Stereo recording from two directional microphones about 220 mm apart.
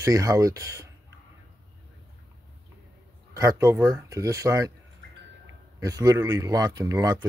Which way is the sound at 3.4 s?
15° right (ahead or behind).